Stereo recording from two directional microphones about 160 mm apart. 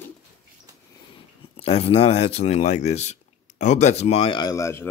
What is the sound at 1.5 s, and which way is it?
Speech, 40° left (ahead or behind).